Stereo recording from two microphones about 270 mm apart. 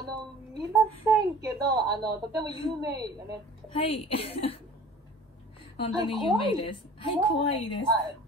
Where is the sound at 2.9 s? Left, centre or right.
Right.